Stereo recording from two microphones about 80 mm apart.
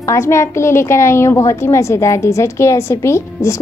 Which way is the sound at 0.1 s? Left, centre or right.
Left.